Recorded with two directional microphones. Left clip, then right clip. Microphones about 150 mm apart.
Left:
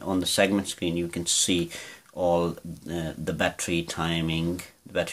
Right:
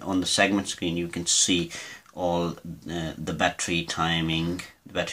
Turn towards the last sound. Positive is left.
turn(degrees=35)  # may be behind; listen again after turning